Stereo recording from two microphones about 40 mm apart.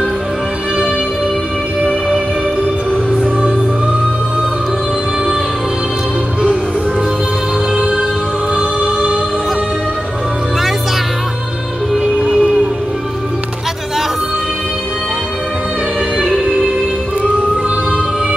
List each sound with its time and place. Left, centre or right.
7.7 s music: right
12.0 s music: centre